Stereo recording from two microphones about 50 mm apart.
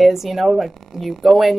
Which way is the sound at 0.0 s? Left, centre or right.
Centre.